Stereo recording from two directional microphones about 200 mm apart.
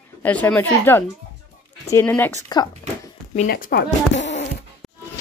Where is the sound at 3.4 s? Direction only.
45° left (ahead or behind).